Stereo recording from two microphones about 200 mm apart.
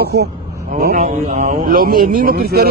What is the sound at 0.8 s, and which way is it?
Speech, 45° right (ahead or behind).